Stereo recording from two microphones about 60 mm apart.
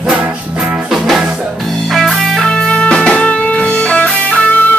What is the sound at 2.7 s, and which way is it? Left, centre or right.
Music, centre.